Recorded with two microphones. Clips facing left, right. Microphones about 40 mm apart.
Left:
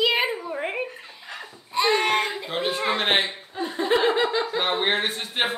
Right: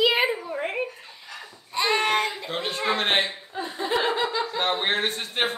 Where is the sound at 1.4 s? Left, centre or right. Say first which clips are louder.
Left 3 dB; centre.